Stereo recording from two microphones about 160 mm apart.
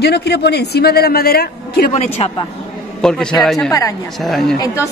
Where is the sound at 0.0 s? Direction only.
90° left; by 1.9 s 75° left (ahead or behind).